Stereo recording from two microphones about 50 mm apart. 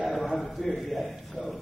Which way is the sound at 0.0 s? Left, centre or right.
Centre.